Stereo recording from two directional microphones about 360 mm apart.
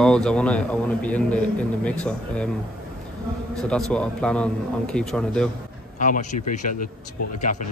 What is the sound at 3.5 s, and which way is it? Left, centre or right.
A man's voice, centre.